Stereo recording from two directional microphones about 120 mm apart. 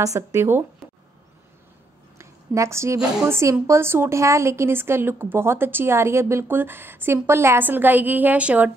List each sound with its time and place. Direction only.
0.0 s a woman's voice: 25° right (ahead or behind)
2.1 s a sound: 25° right (ahead or behind)
3.3 s a woman's voice: 20° right (ahead or behind)